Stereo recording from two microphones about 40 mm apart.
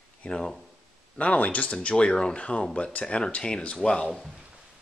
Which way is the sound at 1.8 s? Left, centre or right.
Left.